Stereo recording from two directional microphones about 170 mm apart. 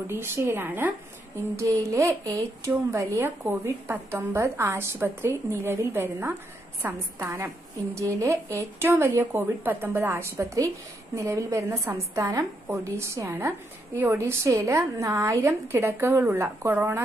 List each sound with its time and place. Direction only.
0.1 s speech: 15° right (ahead or behind)